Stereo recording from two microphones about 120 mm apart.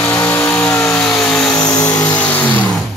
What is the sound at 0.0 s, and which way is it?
Vehicle, 10° left (ahead or behind).